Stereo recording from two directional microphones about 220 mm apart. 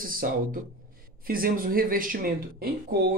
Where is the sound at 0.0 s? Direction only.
40° right (ahead or behind).